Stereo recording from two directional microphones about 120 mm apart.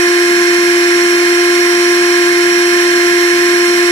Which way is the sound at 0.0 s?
30° left (ahead or behind).